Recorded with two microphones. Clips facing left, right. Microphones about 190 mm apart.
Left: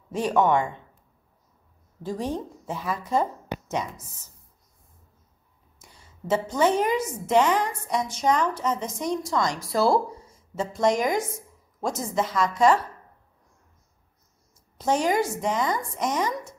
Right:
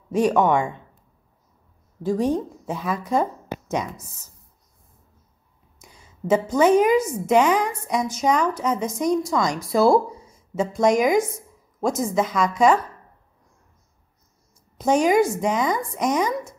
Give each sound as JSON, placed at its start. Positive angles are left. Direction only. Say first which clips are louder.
{"t": 0.1, "sound": "a woman's voice", "louder": "right 3 dB", "side_deg": -15}
{"t": 2.0, "sound": "a woman's voice", "louder": "right 7 dB", "side_deg": -15}
{"t": 5.8, "sound": "a woman's voice", "louder": "right 8 dB", "side_deg": -10}
{"t": 14.8, "sound": "a woman's voice", "louder": "right 5 dB", "side_deg": -15}